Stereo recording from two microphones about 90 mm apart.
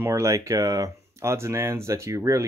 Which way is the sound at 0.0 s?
35° right (ahead or behind).